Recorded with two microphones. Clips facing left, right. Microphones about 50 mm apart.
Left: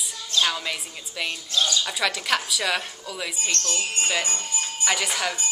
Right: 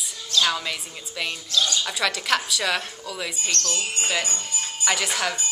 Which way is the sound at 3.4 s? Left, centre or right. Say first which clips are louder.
Even; left.